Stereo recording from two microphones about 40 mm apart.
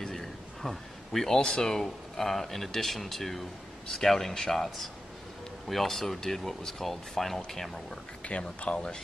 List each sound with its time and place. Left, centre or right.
0.0 s a sound: centre
1.4 s speech: centre
8.2 s speech: left